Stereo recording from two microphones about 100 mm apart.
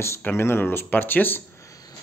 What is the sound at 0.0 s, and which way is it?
Speech, 25° left (ahead or behind).